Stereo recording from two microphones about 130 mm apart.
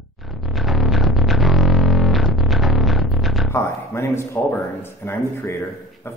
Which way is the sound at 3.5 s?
20° left (ahead or behind).